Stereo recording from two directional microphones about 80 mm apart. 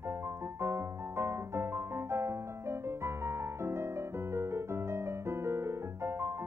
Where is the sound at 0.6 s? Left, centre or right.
Right.